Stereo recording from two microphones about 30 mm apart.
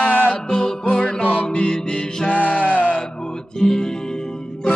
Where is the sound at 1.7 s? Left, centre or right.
Left.